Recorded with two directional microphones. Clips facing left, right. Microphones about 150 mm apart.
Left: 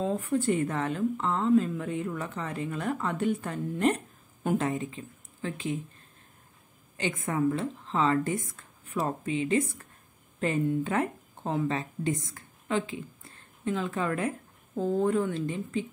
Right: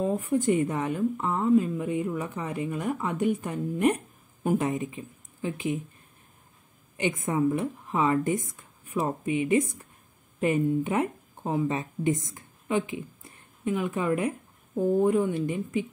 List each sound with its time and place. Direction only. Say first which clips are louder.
0.0 s a woman's voice: right 2 dB; 10° right (ahead or behind)
7.0 s a woman's voice: right 3 dB; 15° right (ahead or behind)